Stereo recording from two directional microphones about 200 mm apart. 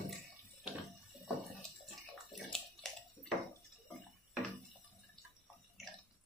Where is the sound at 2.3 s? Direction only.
Centre (ahead or behind).